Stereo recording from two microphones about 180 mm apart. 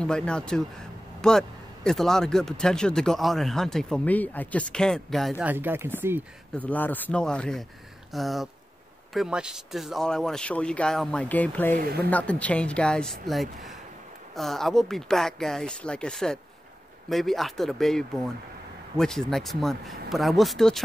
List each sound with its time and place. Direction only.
0.0 s speech: 5° left (ahead or behind)
5.4 s speech: 10° right (ahead or behind)
6.5 s speech: 10° left (ahead or behind)
11.7 s speech: 60° right (ahead or behind)
12.1 s speech: 5° left (ahead or behind)